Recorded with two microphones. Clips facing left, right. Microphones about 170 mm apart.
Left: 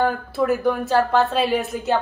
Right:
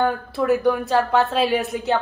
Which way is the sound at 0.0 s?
Centre (ahead or behind).